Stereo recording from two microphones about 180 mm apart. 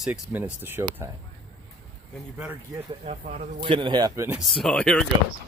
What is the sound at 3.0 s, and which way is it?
Speech, 45° right (ahead or behind).